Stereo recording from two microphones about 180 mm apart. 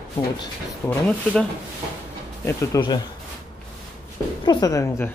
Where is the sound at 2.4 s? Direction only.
20° left (ahead or behind).